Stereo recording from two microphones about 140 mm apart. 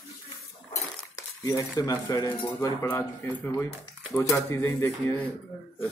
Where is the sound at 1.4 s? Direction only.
25° left (ahead or behind).